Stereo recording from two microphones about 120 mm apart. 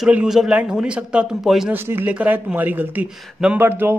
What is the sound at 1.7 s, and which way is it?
Speech, 20° right (ahead or behind).